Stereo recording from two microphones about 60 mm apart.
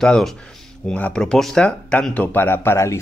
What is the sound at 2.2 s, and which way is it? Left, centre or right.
Speech, left.